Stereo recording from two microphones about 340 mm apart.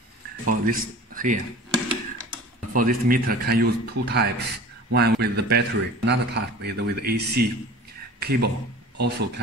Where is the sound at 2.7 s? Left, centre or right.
Right.